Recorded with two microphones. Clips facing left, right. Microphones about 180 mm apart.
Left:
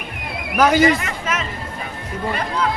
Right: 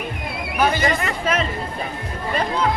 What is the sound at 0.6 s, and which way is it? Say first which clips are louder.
Speech: left 5 dB; 90° left.